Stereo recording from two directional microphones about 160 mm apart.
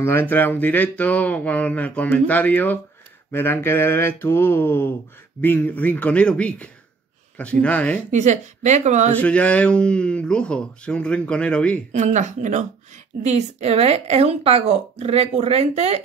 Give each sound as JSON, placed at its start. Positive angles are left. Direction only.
{"t": 0.0, "sound": "speech", "side_deg": 15}
{"t": 8.1, "sound": "speech", "side_deg": -45}
{"t": 9.1, "sound": "speech", "side_deg": 10}
{"t": 11.9, "sound": "a woman's voice", "side_deg": -45}